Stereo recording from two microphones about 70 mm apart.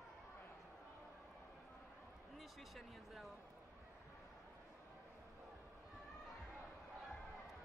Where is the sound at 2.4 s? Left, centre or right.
Centre.